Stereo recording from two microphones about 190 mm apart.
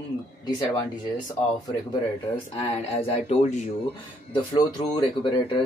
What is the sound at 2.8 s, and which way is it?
Speech, 30° left (ahead or behind).